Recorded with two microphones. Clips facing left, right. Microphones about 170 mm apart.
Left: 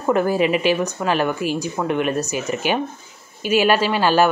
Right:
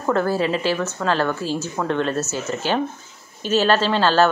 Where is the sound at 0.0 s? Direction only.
15° left (ahead or behind).